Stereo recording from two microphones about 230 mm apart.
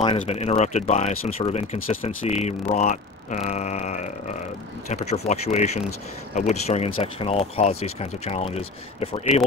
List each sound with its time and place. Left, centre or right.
0.0 s speech: left